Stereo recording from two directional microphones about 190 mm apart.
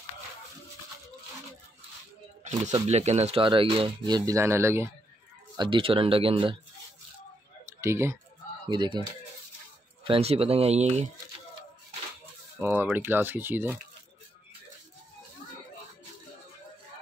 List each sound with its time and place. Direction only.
2.9 s speech: 35° right (ahead or behind); by 4.9 s 15° right (ahead or behind)
5.6 s speech: 25° right (ahead or behind)
7.8 s speech: 15° right (ahead or behind)
10.0 s speech: 30° right (ahead or behind)
12.5 s speech: 10° right (ahead or behind)